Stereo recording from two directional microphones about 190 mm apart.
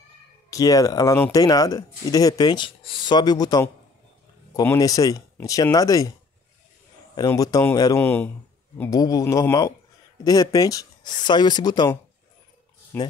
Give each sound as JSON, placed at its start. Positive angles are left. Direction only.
{"t": 0.5, "sound": "speech", "side_deg": 20}
{"t": 7.2, "sound": "speech", "side_deg": 20}